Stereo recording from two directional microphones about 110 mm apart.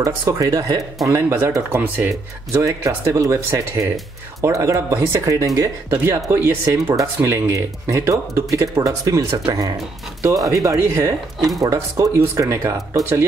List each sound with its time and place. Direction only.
0.0 s speech: 30° right (ahead or behind)